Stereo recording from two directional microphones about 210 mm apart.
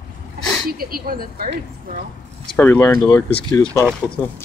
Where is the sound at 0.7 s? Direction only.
45° right (ahead or behind).